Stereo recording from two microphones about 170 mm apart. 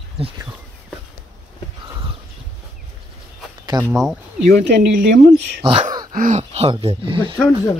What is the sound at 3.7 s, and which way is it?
Speech, 25° right (ahead or behind).